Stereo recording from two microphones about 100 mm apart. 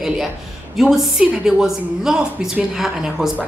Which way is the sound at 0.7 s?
5° right (ahead or behind).